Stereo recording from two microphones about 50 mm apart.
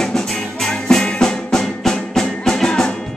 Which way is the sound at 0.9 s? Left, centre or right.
Centre.